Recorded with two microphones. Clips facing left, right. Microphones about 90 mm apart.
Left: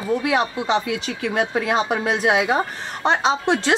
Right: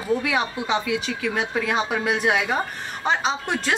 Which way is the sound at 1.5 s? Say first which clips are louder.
Left 3 dB; 30° left (ahead or behind).